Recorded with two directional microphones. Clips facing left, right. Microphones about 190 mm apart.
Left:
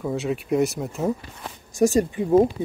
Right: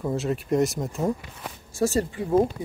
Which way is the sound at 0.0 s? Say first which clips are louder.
Left 1 dB; centre (ahead or behind).